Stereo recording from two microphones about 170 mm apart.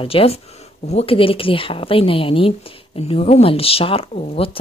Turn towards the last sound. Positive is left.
turn(degrees=35)  # may be behind; listen again after turning